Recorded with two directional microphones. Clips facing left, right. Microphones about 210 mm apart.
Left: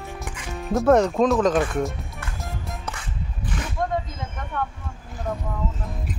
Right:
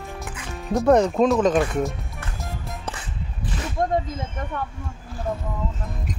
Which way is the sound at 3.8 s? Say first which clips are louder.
Right 3 dB; 35° right (ahead or behind).